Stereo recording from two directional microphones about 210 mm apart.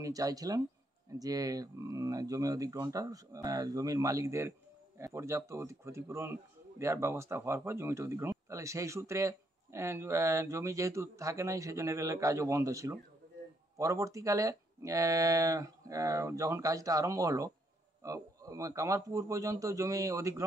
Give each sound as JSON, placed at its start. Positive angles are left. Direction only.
{"t": 0.0, "sound": "speech", "side_deg": -15}